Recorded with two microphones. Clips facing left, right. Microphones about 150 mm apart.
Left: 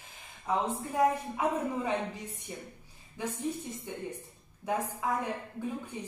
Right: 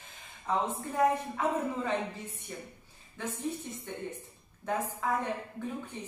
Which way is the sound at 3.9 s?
10° left (ahead or behind).